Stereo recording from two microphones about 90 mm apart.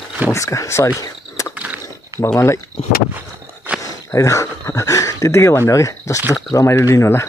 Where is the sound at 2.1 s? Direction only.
35° right (ahead or behind).